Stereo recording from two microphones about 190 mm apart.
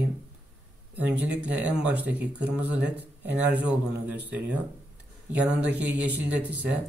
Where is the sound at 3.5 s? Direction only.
10° right (ahead or behind).